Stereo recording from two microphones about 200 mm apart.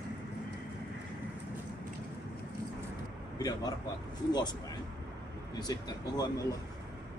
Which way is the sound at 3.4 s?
20° left (ahead or behind).